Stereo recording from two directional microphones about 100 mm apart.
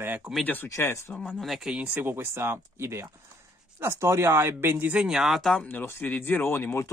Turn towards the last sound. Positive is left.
turn(degrees=20)  # may be behind; listen again after turning